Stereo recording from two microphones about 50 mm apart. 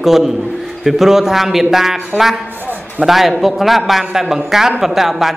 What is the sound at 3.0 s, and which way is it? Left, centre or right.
A man's voice, centre.